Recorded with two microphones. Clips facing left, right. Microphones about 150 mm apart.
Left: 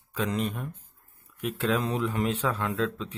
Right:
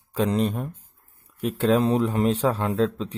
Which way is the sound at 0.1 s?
35° right (ahead or behind).